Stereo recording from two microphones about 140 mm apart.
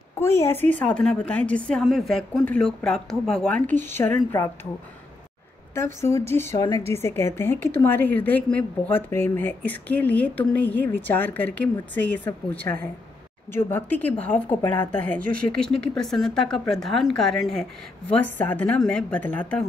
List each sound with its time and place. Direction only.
0.1 s a woman's voice: 20° left (ahead or behind)
5.8 s a woman's voice: 20° left (ahead or behind)